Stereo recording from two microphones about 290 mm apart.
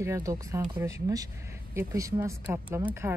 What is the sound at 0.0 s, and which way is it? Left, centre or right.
Speech, centre.